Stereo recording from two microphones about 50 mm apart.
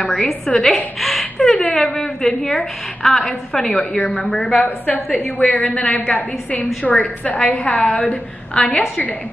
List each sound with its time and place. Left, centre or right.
0.5 s a woman's voice: left
0.9 s a woman's voice: centre
3.6 s a woman's voice: centre
5.2 s a woman's voice: centre
5.6 s a woman's voice: left
8.5 s a woman's voice: centre